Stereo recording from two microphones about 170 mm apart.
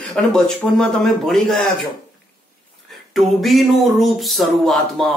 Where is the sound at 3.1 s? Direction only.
Centre (ahead or behind).